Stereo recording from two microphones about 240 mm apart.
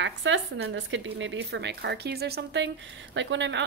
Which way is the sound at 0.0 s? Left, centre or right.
Right.